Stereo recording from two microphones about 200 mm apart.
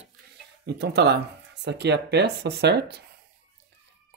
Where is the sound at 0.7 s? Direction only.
55° right (ahead or behind).